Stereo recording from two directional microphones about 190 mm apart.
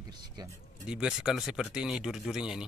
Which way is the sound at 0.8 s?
5° right (ahead or behind).